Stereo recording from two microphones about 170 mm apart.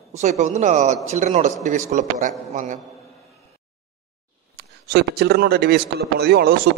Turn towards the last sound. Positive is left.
turn(degrees=-65)  # may be behind; listen again after turning